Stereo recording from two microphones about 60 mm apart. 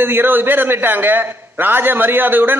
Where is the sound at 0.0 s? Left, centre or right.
Right.